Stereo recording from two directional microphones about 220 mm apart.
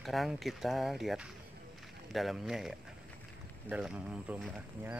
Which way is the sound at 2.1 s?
Centre (ahead or behind).